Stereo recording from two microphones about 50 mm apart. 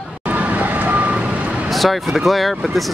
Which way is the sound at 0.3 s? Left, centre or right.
Right.